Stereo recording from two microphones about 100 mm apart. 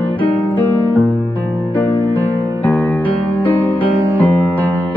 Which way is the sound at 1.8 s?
15° left (ahead or behind).